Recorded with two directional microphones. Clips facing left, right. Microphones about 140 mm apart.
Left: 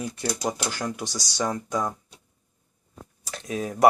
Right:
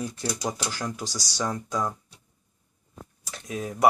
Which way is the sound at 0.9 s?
25° left (ahead or behind).